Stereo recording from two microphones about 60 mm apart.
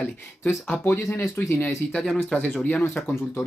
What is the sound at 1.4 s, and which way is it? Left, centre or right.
Speech, left.